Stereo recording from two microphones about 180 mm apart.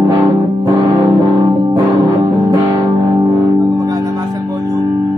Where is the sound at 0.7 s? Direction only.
20° right (ahead or behind).